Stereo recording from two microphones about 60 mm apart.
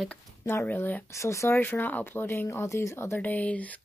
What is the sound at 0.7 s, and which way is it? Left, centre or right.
Speech, left.